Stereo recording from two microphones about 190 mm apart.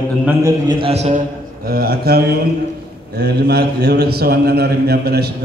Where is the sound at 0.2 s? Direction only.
15° right (ahead or behind); by 1.2 s 35° right (ahead or behind).